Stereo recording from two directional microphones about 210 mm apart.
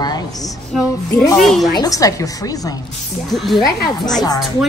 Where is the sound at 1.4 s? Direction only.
Centre (ahead or behind).